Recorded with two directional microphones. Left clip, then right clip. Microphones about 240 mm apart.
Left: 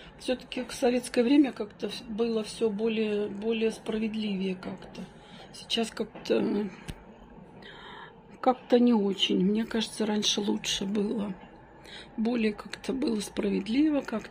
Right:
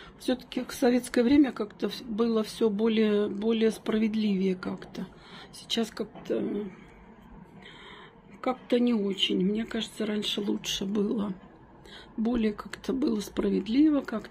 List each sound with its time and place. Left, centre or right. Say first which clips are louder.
0.2 s a woman's voice: right 1 dB; centre
5.7 s speech: left 1 dB; centre
6.2 s speech: left 4 dB; centre
8.4 s speech: left 4 dB; centre